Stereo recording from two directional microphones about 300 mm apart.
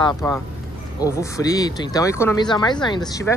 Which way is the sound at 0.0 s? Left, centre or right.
Centre.